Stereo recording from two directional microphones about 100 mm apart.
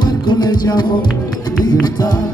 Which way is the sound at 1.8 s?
45° left (ahead or behind).